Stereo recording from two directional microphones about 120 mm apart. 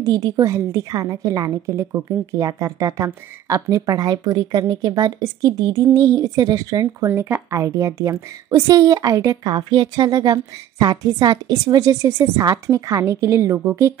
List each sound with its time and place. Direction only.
0.0 s a woman's voice: 30° right (ahead or behind)
9.5 s a woman's voice: 40° right (ahead or behind); by 13.9 s 25° right (ahead or behind)